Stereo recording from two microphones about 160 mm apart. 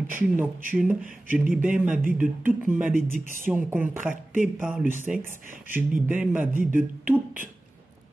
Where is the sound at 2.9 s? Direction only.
60° right (ahead or behind).